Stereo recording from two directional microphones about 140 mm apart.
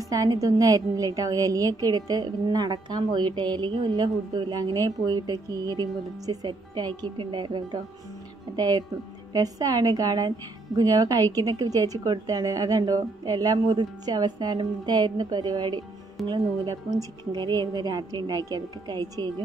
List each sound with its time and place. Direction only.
0.0 s a woman's voice: 25° right (ahead or behind)